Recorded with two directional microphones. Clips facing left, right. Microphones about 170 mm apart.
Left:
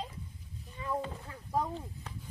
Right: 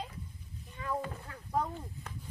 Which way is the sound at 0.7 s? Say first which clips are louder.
Left 1 dB; centre (ahead or behind).